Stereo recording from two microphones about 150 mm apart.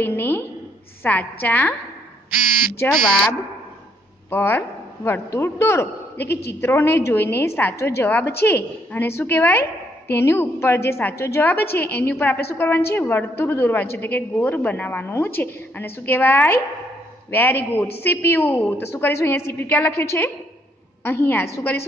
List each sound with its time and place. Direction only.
0.0 s a woman's voice: 15° left (ahead or behind)
2.8 s a woman's voice: 15° left (ahead or behind)
4.3 s a woman's voice: 15° left (ahead or behind)
6.1 s a woman's voice: 90° left
6.6 s a woman's voice: 15° left (ahead or behind)